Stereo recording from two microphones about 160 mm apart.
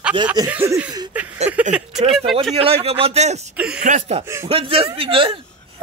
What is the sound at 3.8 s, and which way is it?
Speech, 45° right (ahead or behind).